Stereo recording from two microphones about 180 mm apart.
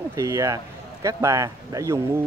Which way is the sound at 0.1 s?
15° right (ahead or behind).